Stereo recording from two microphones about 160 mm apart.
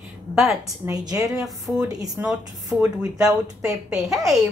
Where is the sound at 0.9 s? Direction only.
25° right (ahead or behind).